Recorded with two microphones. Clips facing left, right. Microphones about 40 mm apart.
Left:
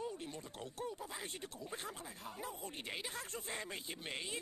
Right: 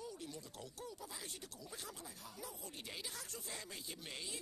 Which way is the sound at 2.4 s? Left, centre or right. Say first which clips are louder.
Left 4 dB; left.